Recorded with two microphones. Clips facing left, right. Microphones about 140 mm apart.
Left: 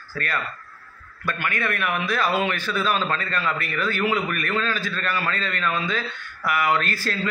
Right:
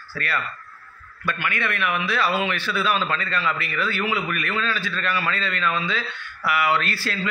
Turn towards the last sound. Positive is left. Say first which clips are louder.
# left 1 dB
turn(degrees=40)  # may be behind; listen again after turning